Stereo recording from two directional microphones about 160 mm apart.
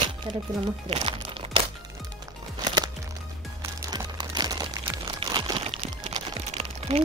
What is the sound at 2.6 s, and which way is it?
Music, 25° right (ahead or behind).